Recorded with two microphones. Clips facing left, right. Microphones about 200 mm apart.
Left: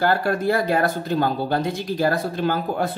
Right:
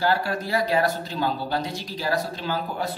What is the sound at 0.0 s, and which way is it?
Speech, 55° left (ahead or behind).